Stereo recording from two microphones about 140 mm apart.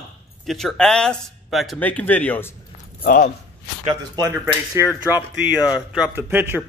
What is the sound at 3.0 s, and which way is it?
Speech, 75° left (ahead or behind).